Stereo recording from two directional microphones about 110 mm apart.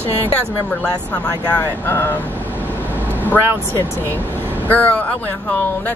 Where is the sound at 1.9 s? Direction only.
20° left (ahead or behind).